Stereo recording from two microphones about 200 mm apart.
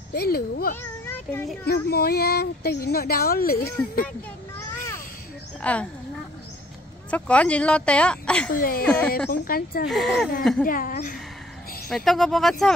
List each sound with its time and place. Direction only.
0.1 s speech: 50° left (ahead or behind)
1.0 s child singing: 10° left (ahead or behind)
1.7 s speech: 50° left (ahead or behind)
5.6 s speech: 5° left (ahead or behind)
7.1 s speech: 5° left (ahead or behind)
8.5 s speech: 45° left (ahead or behind)
9.8 s speech: centre (ahead or behind)
10.7 s speech: 45° left (ahead or behind)
11.9 s speech: centre (ahead or behind)